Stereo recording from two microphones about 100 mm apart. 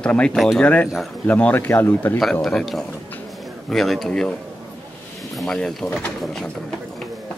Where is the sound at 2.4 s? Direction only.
5° left (ahead or behind).